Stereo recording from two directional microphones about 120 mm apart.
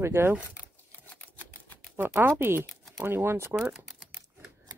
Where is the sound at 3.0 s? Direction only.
20° right (ahead or behind).